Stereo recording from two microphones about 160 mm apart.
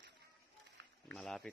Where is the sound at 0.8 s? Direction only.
90° right.